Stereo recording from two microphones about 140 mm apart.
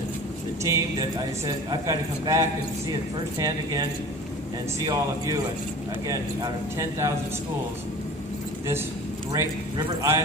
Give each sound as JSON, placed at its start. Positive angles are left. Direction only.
{"t": 0.7, "sound": "speech", "side_deg": -25}
{"t": 9.3, "sound": "speech", "side_deg": -25}